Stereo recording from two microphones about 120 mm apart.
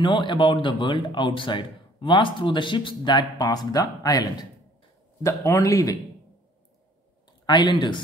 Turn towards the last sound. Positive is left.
turn(degrees=40)  # may be behind; listen again after turning